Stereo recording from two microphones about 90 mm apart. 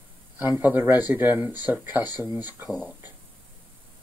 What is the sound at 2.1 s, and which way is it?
Speech, 45° left (ahead or behind).